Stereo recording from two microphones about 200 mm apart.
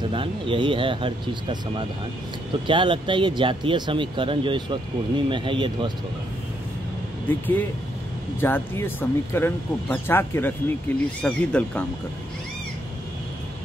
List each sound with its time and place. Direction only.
0.1 s speech: 25° right (ahead or behind)
7.2 s speech: 10° left (ahead or behind)